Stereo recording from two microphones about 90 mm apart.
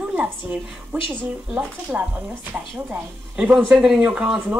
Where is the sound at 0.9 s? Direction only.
25° right (ahead or behind).